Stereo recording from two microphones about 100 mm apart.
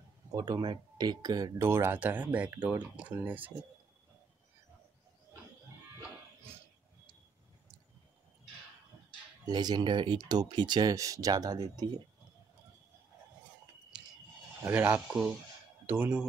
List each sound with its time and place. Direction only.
0.3 s speech: 40° right (ahead or behind)
1.6 s speech: 25° right (ahead or behind)
5.9 s music: 25° right (ahead or behind)
9.5 s speech: 45° right (ahead or behind)
11.0 s speech: 35° right (ahead or behind)
13.9 s a sound: 10° right (ahead or behind)
14.6 s speech: 20° right (ahead or behind)
15.0 s speech: 5° right (ahead or behind)
15.9 s speech: 20° right (ahead or behind)